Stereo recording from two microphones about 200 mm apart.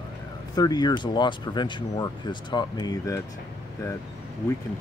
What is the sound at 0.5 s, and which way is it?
Speech, 20° left (ahead or behind).